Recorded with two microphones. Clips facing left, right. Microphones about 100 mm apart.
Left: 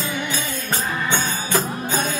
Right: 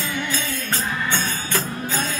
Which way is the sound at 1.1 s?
20° left (ahead or behind).